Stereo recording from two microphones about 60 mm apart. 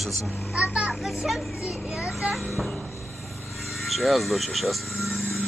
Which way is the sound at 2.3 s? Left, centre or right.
Centre.